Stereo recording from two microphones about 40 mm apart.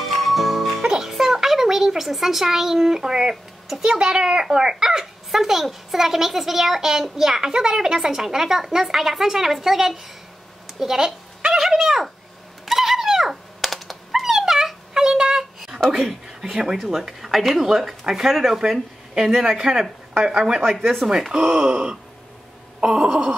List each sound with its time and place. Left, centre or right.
0.0 s music: centre
0.8 s a sound: centre
3.6 s a child's voice: centre
10.7 s a sound: centre
12.6 s dog: centre
15.0 s a sound: centre
15.9 s a child's voice: centre
20.6 s speech: centre
21.0 s a child's voice: centre
21.3 s speech: right